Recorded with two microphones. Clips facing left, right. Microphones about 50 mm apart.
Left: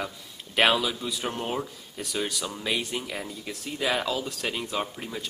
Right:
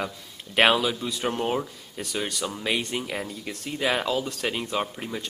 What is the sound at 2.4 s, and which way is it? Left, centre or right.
Speech, centre.